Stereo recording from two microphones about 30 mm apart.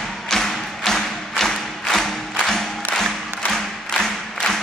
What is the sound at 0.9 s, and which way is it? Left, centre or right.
Music, centre.